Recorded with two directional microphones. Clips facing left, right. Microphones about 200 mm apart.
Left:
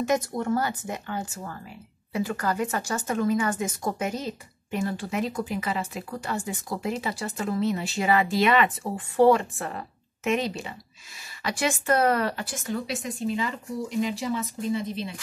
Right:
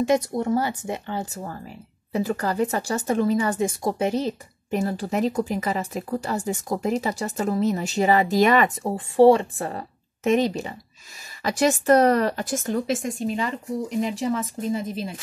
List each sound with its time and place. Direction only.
0.0 s a woman's voice: 25° right (ahead or behind); by 9.0 s 40° right (ahead or behind)
9.1 s a woman's voice: 25° right (ahead or behind); by 13.5 s 45° right (ahead or behind)
14.6 s speech: 45° right (ahead or behind)